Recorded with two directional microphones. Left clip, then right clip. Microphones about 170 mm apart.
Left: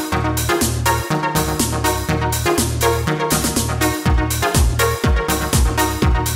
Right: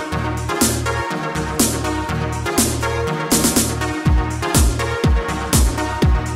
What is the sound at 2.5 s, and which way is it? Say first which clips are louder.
Music: even; centre (ahead or behind).